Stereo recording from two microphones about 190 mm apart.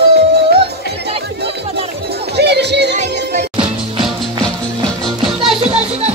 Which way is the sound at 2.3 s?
60° right (ahead or behind).